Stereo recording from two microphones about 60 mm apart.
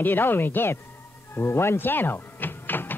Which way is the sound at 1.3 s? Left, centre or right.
Left.